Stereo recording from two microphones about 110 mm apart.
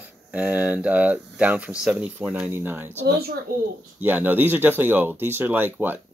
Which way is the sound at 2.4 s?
20° right (ahead or behind).